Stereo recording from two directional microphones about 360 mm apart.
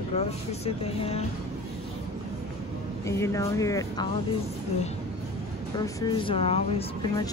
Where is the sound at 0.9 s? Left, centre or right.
Centre.